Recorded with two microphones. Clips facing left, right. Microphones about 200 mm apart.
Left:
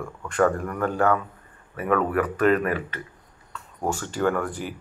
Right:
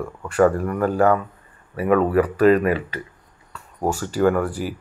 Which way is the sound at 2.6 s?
20° right (ahead or behind).